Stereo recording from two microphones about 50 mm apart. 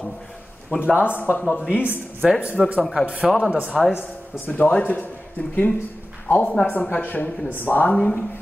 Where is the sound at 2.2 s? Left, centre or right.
Centre.